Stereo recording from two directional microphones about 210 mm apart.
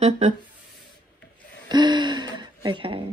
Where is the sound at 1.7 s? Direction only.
20° right (ahead or behind).